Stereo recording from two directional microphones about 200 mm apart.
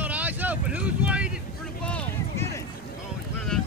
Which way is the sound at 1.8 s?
5° left (ahead or behind).